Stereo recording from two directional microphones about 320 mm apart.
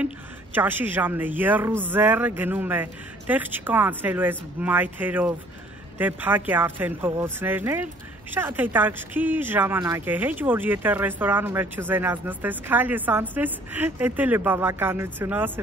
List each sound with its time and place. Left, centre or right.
0.6 s speech: centre